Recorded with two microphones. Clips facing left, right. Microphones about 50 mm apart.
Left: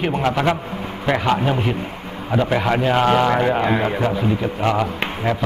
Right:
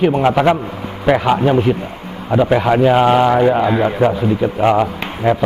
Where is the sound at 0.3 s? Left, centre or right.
Centre.